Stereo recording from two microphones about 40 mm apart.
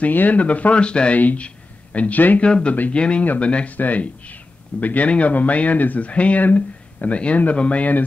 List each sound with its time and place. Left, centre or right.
0.1 s speech: left
0.4 s speech: left
1.1 s speech: left
2.4 s speech: left
6.0 s speech: left